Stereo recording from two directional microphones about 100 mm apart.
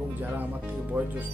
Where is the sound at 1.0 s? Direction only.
15° right (ahead or behind).